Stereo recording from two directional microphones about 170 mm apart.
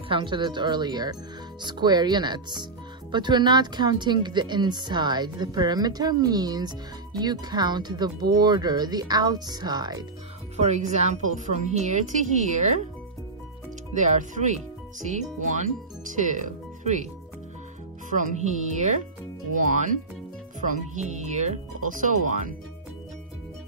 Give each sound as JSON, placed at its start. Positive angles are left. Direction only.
{"t": 0.1, "sound": "speech", "side_deg": -30}
{"t": 10.6, "sound": "a woman's voice", "side_deg": -40}
{"t": 13.9, "sound": "a woman's voice", "side_deg": -45}
{"t": 18.1, "sound": "a woman's voice", "side_deg": -45}